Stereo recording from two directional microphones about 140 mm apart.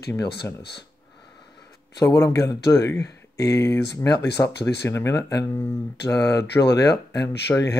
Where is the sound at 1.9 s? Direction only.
25° left (ahead or behind).